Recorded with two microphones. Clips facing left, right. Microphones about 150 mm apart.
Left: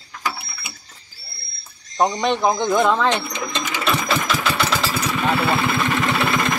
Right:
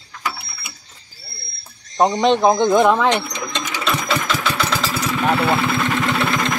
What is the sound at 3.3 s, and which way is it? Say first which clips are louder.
Engine: even; 5° left (ahead or behind).